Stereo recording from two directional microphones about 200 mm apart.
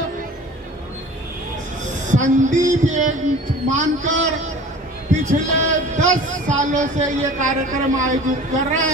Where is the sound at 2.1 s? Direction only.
40° right (ahead or behind).